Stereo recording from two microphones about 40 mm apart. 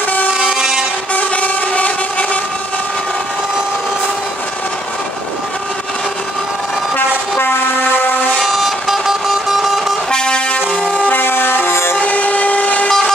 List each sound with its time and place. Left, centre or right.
0.3 s vehicle: right
1.1 s vehicle: left
7.3 s train: left
8.4 s vehicle: centre
10.1 s vehicle: left
11.1 s a sound: left
11.9 s train: left